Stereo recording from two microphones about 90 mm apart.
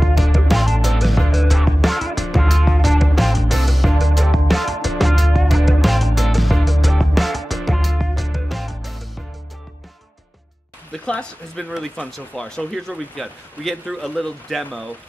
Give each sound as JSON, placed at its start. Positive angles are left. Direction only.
{"t": 0.0, "sound": "music", "side_deg": 0}
{"t": 10.9, "sound": "a sound", "side_deg": 10}
{"t": 12.1, "sound": "speech", "side_deg": 10}
{"t": 14.7, "sound": "speech", "side_deg": 10}